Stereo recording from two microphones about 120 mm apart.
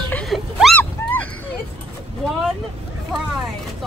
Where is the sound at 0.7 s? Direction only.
15° left (ahead or behind).